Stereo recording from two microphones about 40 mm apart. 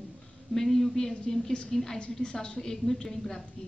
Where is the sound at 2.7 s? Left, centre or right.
Centre.